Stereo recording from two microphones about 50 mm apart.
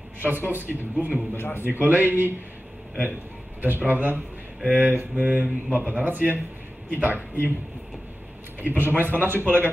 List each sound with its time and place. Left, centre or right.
0.2 s speech: right
1.3 s a man's voice: left
1.7 s speech: right
3.6 s speech: right
8.5 s speech: right